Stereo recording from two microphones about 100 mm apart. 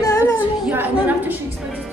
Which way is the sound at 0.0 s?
35° left (ahead or behind).